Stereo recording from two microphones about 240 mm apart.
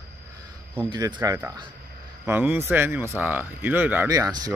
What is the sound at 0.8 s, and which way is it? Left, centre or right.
Speech, centre.